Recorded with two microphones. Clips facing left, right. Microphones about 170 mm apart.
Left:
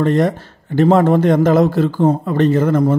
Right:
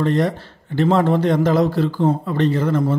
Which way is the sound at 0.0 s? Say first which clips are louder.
Left 4 dB; 50° left (ahead or behind).